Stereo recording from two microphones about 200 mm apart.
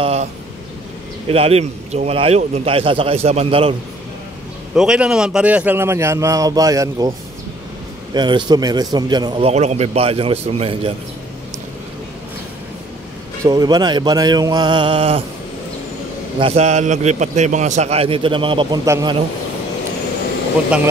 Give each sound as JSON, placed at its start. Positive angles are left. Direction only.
{"t": 0.0, "sound": "a sound", "side_deg": -30}
{"t": 1.3, "sound": "a man's voice", "side_deg": -30}
{"t": 4.7, "sound": "a man's voice", "side_deg": -5}
{"t": 8.1, "sound": "a man's voice", "side_deg": -20}
{"t": 13.4, "sound": "a man's voice", "side_deg": -20}
{"t": 16.3, "sound": "a man's voice", "side_deg": -30}